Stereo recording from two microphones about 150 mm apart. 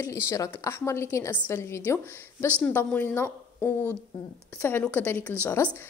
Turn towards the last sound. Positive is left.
turn(degrees=15)  # may be behind; listen again after turning